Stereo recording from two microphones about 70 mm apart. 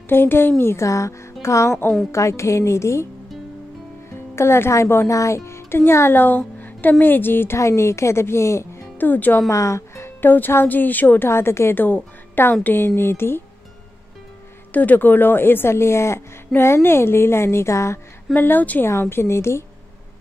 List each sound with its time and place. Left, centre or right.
0.1 s a woman's voice: left
4.1 s speech: left
7.5 s a woman's voice: left
8.9 s speech: left
9.5 s speech: left
11.2 s a woman's voice: left
14.7 s a woman's voice: left
18.3 s speech: left
18.9 s a woman's voice: left